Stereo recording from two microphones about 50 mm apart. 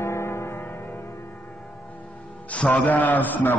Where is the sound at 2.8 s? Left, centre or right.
Left.